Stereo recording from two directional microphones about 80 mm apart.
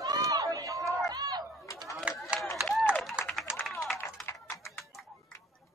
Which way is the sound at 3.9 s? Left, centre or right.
Left.